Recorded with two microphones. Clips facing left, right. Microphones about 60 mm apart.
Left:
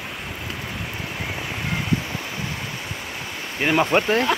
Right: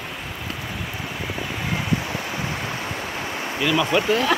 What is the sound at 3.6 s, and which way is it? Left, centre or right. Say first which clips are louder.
Speech: left 1 dB; left.